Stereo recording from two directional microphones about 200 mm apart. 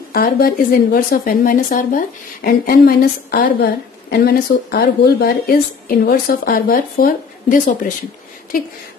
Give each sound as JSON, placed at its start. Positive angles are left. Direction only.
{"t": 0.1, "sound": "speech", "side_deg": 45}